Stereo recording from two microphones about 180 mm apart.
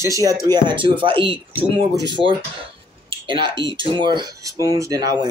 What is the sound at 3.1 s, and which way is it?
Speech, 25° right (ahead or behind).